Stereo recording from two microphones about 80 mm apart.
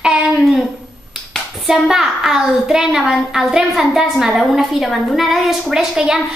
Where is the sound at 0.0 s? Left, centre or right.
Centre.